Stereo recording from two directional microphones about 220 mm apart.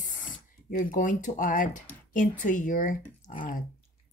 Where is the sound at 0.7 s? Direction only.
40° left (ahead or behind).